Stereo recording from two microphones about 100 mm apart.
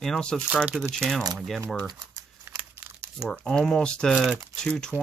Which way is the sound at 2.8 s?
10° right (ahead or behind).